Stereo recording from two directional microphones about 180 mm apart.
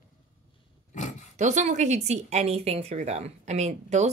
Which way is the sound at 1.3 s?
40° right (ahead or behind).